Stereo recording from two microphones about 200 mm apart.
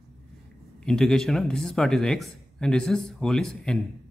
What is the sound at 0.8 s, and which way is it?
Speech, 5° left (ahead or behind).